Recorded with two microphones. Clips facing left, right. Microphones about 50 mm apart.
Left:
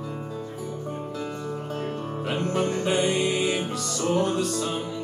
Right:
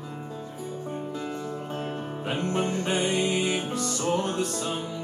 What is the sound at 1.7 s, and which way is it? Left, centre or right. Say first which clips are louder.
Music: left 2 dB; centre.